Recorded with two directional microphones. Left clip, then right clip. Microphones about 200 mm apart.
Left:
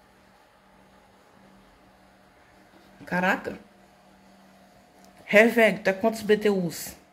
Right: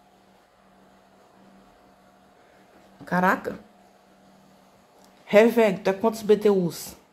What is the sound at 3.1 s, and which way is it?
Speech, 10° right (ahead or behind).